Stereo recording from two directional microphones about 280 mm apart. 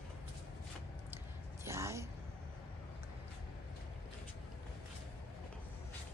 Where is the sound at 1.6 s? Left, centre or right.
Centre.